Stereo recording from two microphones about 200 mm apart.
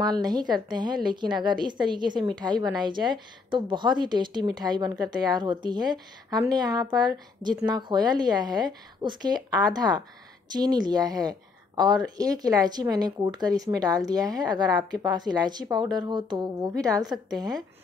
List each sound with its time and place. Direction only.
0.0 s a woman's voice: 20° right (ahead or behind)